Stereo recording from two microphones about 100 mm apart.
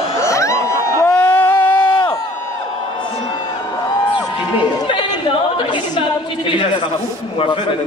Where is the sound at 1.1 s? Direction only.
20° left (ahead or behind).